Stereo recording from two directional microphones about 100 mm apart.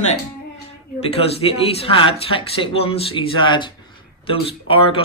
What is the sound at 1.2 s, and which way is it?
A man's voice, 75° left (ahead or behind).